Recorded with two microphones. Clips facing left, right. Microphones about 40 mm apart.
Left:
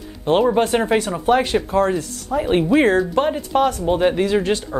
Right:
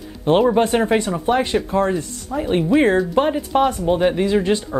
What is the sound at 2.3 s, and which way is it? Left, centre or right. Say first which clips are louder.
Speech: left 2 dB; centre.